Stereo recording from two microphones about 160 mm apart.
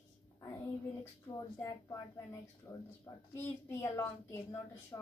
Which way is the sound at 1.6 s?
20° left (ahead or behind).